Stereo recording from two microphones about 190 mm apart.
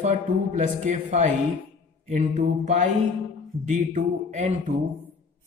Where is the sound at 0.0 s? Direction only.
40° right (ahead or behind).